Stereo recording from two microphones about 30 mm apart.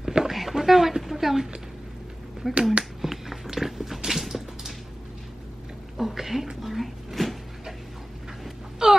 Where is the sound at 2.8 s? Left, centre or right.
Centre.